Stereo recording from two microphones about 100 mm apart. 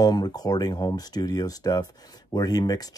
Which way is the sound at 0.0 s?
40° left (ahead or behind).